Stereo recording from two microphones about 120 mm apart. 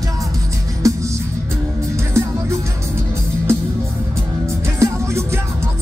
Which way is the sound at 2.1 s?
25° right (ahead or behind).